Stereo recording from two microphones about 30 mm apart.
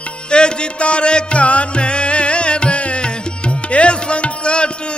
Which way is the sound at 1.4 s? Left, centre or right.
Left.